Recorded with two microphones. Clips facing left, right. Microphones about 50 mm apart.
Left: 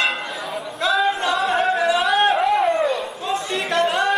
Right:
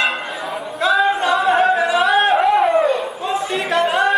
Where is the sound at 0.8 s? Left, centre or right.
Centre.